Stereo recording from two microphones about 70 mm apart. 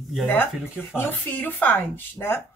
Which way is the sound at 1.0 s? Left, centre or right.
Left.